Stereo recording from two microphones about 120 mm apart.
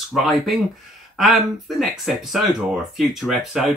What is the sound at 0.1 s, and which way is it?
Speech, centre (ahead or behind).